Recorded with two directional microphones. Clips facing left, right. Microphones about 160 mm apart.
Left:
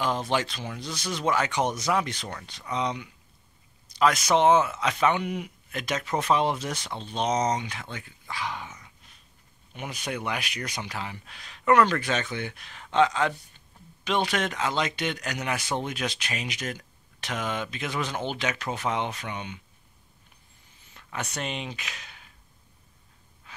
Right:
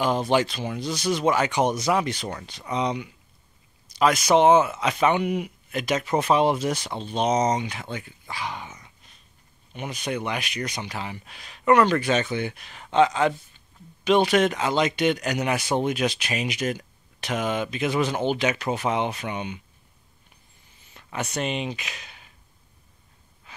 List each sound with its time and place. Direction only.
0.0 s speech: 10° right (ahead or behind)
9.8 s speech: 5° left (ahead or behind)
20.9 s speech: 5° right (ahead or behind)